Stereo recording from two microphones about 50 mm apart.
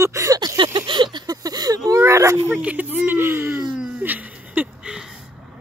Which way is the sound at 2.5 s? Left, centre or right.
Right.